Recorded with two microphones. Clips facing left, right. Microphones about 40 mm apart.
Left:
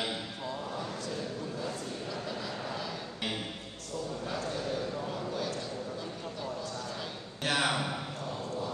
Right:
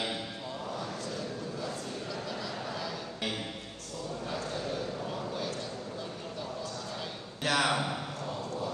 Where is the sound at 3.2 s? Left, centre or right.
Left.